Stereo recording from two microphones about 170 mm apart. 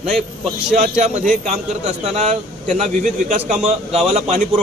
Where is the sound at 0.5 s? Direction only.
40° right (ahead or behind).